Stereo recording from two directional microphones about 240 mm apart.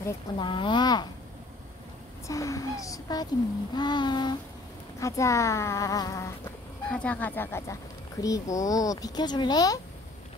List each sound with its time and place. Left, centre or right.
0.0 s a child's voice: centre
2.2 s speech: centre